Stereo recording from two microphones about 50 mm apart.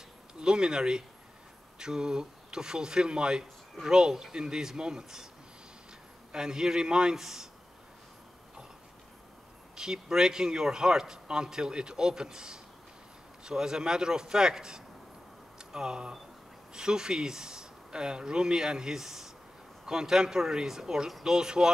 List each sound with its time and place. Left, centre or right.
0.4 s speech: centre
6.3 s speech: centre
9.8 s speech: centre